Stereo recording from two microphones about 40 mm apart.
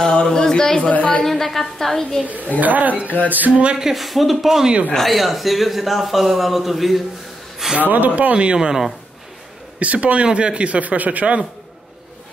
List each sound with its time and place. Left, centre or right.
0.1 s speech: centre
0.9 s a woman's voice: left
1.2 s a man's voice: centre
2.6 s speech: right
3.7 s a man's voice: centre
7.8 s speech: right
8.5 s speech: centre
9.8 s speech: right